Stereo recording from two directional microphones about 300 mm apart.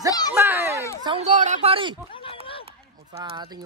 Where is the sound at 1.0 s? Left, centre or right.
Right.